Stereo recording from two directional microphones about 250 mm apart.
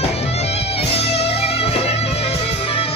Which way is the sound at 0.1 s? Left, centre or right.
Left.